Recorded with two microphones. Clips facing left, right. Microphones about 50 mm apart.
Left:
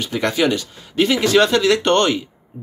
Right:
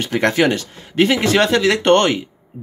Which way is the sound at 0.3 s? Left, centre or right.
Right.